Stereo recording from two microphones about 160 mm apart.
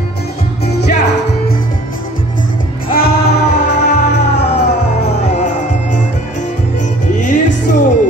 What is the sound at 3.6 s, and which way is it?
Music, 50° left (ahead or behind).